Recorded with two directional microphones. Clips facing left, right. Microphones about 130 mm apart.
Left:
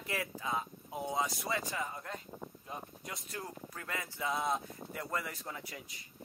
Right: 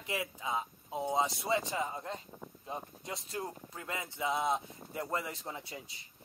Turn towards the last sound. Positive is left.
turn(degrees=-25)  # may be behind; listen again after turning